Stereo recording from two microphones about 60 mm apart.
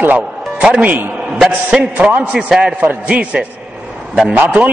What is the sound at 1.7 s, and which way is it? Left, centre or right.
A man's voice, centre.